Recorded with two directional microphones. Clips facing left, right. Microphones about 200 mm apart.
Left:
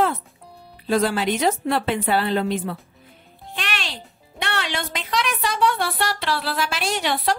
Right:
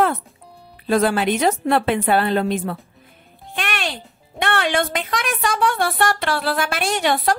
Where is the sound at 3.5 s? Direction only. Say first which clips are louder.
Right 5 dB; 55° right (ahead or behind).